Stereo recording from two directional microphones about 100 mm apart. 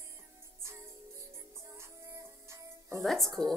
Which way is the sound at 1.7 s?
25° right (ahead or behind).